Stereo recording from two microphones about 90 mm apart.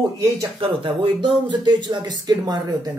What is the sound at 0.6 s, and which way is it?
Speech, 75° right (ahead or behind).